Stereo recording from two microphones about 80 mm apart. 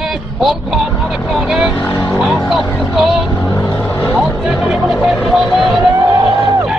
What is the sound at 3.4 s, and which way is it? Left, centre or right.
Vehicle, left.